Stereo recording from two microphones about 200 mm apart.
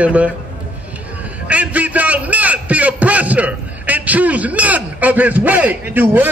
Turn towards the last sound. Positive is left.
turn(degrees=-10)  # may be behind; listen again after turning